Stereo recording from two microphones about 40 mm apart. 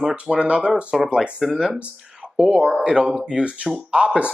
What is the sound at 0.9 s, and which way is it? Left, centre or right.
Speech, centre.